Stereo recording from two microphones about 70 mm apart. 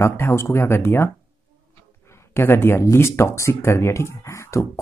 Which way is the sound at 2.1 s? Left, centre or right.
Left.